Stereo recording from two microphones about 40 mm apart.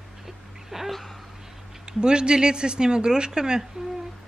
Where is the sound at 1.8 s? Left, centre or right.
Right.